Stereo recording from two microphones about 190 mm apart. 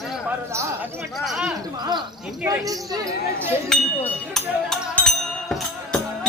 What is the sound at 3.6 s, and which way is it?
Music, centre (ahead or behind).